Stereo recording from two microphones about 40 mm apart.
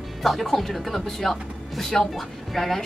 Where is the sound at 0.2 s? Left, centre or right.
Centre.